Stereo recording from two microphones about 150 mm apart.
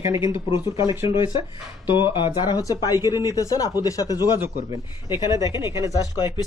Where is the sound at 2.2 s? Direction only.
30° left (ahead or behind).